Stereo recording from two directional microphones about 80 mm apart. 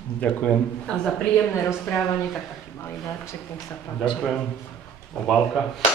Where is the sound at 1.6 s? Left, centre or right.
Left.